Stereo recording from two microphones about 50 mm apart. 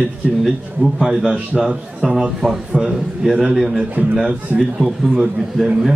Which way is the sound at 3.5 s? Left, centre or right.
Centre.